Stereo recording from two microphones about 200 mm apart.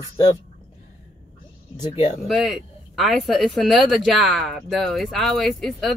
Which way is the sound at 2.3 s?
Centre (ahead or behind).